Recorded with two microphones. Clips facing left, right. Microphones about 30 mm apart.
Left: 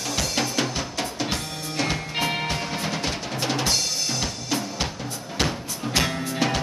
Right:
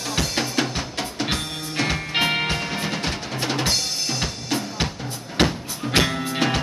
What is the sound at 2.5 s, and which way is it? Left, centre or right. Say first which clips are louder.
Music: right 2 dB; centre.